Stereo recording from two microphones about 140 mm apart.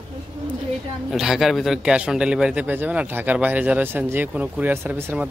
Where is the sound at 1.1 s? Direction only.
Centre (ahead or behind).